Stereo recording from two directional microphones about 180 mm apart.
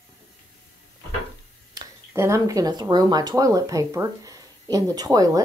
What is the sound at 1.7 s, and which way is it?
Speech, 15° right (ahead or behind).